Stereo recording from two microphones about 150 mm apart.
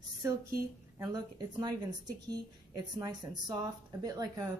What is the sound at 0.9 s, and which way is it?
Speech, 25° right (ahead or behind).